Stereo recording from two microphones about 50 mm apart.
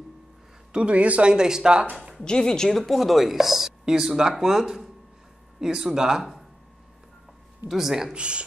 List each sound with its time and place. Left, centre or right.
0.7 s a man's voice: right
1.3 s speech: centre
2.2 s speech: centre
7.6 s speech: centre
8.1 s a man's voice: right